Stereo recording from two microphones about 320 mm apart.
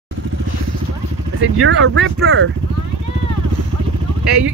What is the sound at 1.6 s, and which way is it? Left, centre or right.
Speech, right.